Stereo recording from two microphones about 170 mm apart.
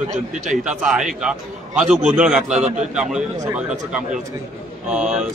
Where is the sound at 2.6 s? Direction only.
45° right (ahead or behind).